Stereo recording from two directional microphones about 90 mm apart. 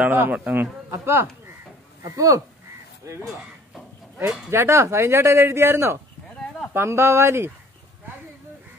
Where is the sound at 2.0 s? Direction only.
40° right (ahead or behind).